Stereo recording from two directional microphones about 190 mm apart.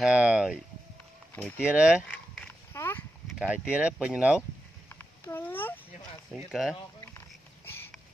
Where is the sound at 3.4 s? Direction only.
5° right (ahead or behind).